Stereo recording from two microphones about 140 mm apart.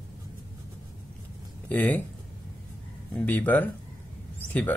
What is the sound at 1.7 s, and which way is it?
Speech, 10° left (ahead or behind).